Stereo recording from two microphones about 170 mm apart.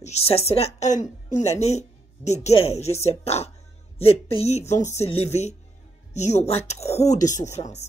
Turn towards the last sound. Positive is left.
turn(degrees=45)  # may be behind; listen again after turning